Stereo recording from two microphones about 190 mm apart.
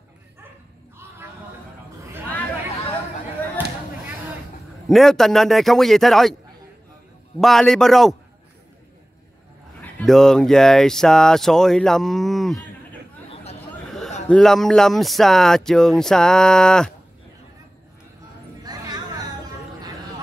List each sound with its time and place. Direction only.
4.8 s speech: centre (ahead or behind)
7.3 s speech: centre (ahead or behind)
9.8 s speech: 5° left (ahead or behind)
13.3 s chatter: 35° left (ahead or behind)
14.3 s speech: centre (ahead or behind)
18.6 s a sound: 20° right (ahead or behind)